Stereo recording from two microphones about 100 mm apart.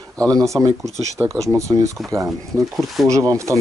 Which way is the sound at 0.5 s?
35° right (ahead or behind).